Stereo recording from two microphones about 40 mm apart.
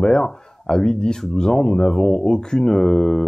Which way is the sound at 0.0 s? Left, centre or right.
Centre.